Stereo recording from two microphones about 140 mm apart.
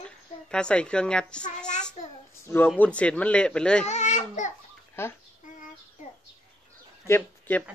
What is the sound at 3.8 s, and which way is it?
Speech, 55° left (ahead or behind).